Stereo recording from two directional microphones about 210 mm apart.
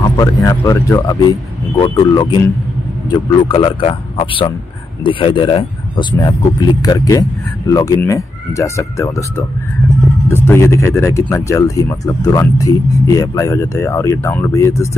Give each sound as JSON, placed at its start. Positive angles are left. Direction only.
{"t": 0.2, "sound": "a man's voice", "side_deg": 15}
{"t": 10.2, "sound": "speech", "side_deg": 10}